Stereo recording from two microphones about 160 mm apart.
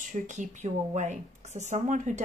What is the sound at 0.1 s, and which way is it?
A woman's voice, 50° right (ahead or behind).